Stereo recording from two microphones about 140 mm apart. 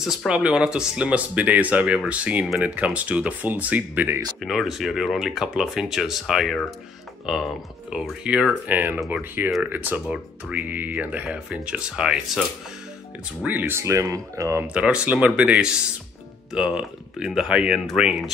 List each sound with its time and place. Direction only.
0.0 s speech: 5° right (ahead or behind)
4.4 s speech: centre (ahead or behind)
7.9 s speech: 5° right (ahead or behind)
14.7 s speech: 10° right (ahead or behind)